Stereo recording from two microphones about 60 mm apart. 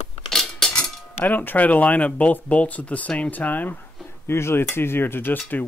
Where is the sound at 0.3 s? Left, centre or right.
Centre.